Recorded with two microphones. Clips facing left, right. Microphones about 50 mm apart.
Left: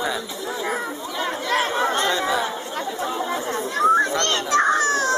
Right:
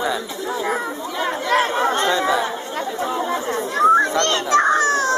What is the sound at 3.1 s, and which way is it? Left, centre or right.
Chatter, right.